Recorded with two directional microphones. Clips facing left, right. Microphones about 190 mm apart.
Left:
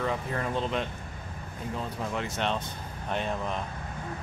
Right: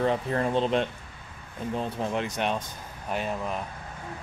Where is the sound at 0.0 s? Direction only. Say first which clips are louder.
Right 5 dB; 30° right (ahead or behind).